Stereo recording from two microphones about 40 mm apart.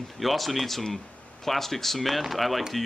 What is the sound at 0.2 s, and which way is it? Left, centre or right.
Speech, centre.